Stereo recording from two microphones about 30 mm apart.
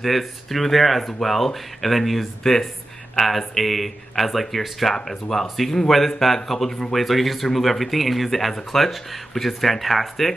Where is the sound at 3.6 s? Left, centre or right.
Centre.